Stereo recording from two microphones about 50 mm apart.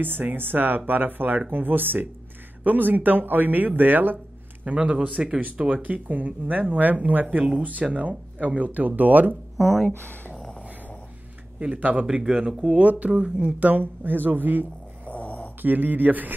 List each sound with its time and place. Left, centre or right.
0.0 s speech: right
4.6 s speech: right
9.8 s speech: left
11.6 s speech: right
12.1 s speech: centre
13.0 s speech: right
15.0 s a sound: left
15.6 s speech: right